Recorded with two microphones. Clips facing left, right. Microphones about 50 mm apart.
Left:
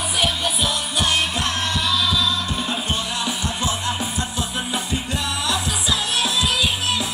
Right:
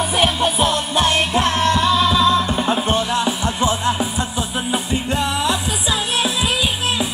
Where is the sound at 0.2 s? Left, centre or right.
Right.